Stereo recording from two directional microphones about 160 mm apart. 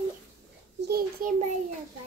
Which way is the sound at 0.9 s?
75° right (ahead or behind).